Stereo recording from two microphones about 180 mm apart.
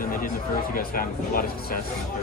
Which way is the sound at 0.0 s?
50° left (ahead or behind).